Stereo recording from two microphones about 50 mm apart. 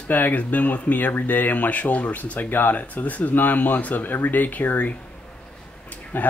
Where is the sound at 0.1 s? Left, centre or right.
Left.